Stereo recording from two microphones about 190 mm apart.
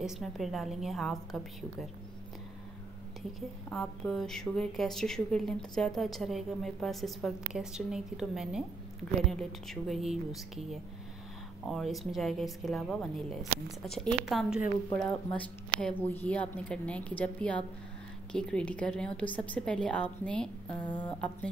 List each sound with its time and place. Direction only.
0.0 s speech: centre (ahead or behind)
3.2 s speech: centre (ahead or behind)
15.3 s a woman's voice: 10° left (ahead or behind)